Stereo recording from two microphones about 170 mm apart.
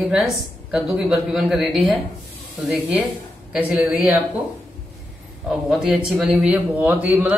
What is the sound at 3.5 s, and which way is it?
Speech, 10° right (ahead or behind).